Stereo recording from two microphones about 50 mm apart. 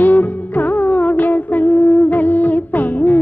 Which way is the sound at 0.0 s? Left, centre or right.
Left.